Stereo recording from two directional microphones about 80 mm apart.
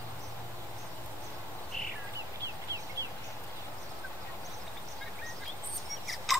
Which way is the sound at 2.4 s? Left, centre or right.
Right.